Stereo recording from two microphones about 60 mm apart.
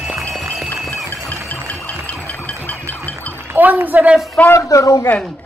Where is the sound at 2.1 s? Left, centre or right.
Left.